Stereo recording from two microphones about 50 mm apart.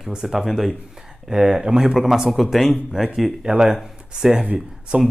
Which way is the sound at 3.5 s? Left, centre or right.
Centre.